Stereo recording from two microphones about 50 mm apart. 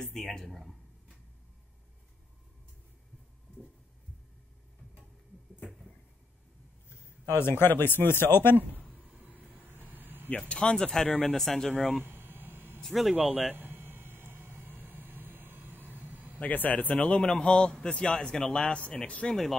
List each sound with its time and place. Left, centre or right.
0.0 s speech: centre
7.2 s speech: left
8.5 s a sound: right
10.5 s speech: centre
11.3 s speech: centre
12.0 s a sound: right
12.8 s speech: centre
13.1 s speech: right
13.6 s a sound: right
16.3 s speech: left
17.3 s speech: centre
19.2 s speech: centre